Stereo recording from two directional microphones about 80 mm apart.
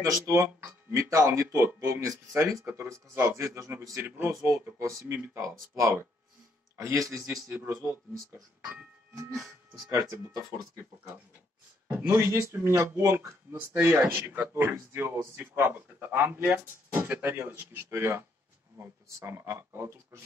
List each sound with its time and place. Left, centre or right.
0.0 s speech: right
0.3 s speech: right
0.9 s speech: right
9.8 s speech: right
11.9 s speech: right